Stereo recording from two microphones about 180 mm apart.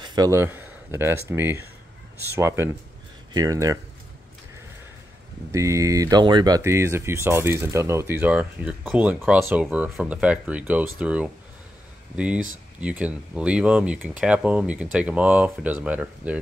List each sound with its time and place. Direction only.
0.0 s speech: 20° right (ahead or behind)
5.5 s speech: 15° right (ahead or behind)
12.8 s speech: 5° right (ahead or behind)